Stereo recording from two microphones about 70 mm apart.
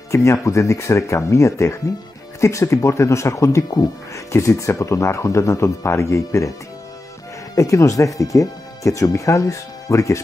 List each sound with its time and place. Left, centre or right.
0.1 s speech: left
7.5 s speech: left